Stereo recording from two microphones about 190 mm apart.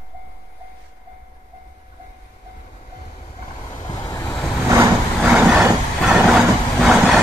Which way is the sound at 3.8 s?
20° left (ahead or behind).